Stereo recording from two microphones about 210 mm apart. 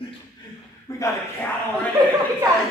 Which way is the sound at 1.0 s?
10° left (ahead or behind).